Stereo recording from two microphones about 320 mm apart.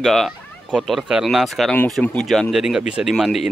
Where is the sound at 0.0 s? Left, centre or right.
Centre.